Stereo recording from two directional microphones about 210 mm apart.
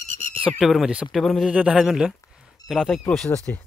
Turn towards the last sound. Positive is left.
turn(degrees=5)  # may be behind; listen again after turning